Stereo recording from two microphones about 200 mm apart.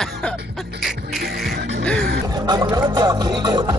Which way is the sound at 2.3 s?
20° right (ahead or behind).